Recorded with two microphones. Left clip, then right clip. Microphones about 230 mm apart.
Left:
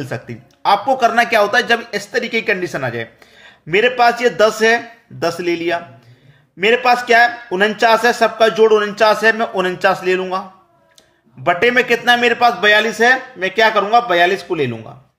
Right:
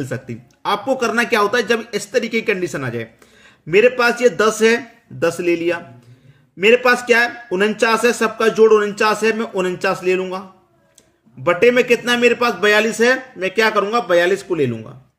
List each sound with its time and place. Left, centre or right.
0.0 s speech: centre
11.4 s a man's voice: centre